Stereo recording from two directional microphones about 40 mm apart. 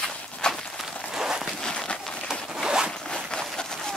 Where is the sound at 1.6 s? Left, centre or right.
Centre.